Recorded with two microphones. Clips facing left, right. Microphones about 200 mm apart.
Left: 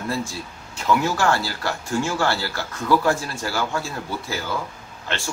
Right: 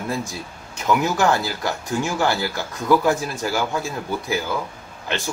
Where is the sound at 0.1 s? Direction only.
20° right (ahead or behind).